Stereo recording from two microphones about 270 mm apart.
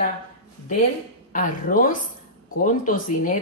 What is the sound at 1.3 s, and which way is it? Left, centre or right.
Speech, left.